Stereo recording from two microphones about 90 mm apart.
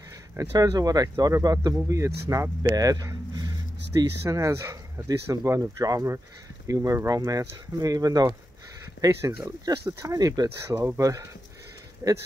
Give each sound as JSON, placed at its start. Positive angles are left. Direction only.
{"t": 0.4, "sound": "speech", "side_deg": -40}
{"t": 1.9, "sound": "speech", "side_deg": -35}
{"t": 4.2, "sound": "speech", "side_deg": -35}
{"t": 9.0, "sound": "speech", "side_deg": -30}
{"t": 10.1, "sound": "speech", "side_deg": -45}